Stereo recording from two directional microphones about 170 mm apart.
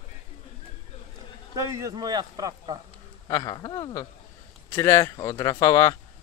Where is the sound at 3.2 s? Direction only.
20° left (ahead or behind).